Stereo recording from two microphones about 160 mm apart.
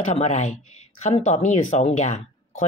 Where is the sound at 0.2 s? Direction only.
50° left (ahead or behind).